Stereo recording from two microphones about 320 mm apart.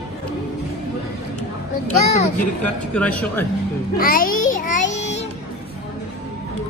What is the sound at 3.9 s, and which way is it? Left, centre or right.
Child singing, left.